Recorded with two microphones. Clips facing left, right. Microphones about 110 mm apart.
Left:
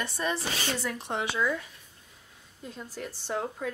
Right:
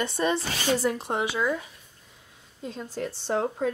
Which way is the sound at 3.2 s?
30° right (ahead or behind).